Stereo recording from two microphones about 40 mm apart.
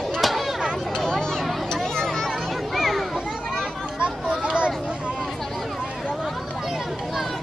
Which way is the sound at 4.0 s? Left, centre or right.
Right.